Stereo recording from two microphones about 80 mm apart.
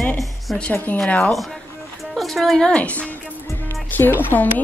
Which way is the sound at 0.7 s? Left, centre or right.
Left.